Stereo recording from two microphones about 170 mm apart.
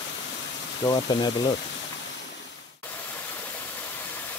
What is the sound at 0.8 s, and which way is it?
Speech, 25° left (ahead or behind).